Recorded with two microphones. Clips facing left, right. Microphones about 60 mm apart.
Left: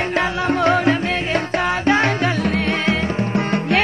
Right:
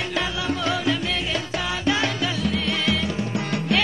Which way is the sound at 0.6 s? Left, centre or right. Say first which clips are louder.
Left 9 dB; left.